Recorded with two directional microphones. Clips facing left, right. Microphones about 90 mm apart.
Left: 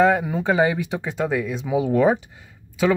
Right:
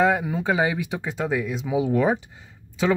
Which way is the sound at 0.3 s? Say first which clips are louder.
Left 3 dB; 5° right (ahead or behind).